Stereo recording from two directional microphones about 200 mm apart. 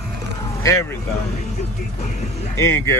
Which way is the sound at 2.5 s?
15° left (ahead or behind).